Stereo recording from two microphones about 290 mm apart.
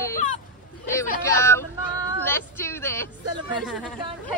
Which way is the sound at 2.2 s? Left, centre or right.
Centre.